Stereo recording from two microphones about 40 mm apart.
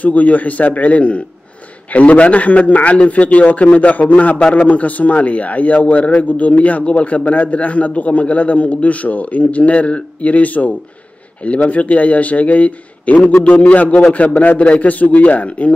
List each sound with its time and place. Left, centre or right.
0.0 s a man's voice: left